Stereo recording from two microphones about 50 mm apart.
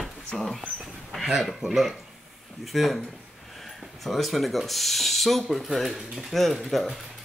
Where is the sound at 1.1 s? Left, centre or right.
Centre.